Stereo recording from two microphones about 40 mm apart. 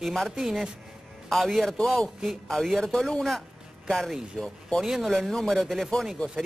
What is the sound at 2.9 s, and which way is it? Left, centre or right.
Speech, centre.